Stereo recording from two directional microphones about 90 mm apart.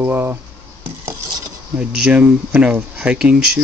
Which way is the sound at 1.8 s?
15° right (ahead or behind).